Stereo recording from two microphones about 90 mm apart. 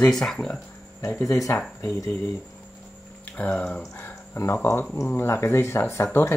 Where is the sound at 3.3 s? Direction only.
15° left (ahead or behind).